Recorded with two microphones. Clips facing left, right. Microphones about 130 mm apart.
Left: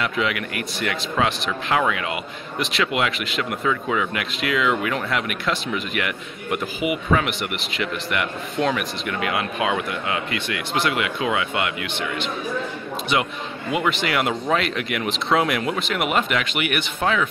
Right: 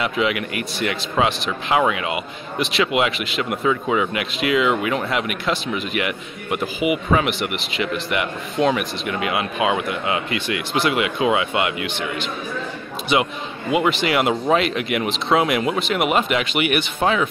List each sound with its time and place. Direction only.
0.0 s speech: 15° right (ahead or behind)
13.1 s a man's voice: 15° right (ahead or behind)